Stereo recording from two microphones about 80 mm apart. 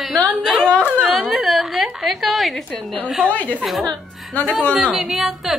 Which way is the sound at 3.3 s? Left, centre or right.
Centre.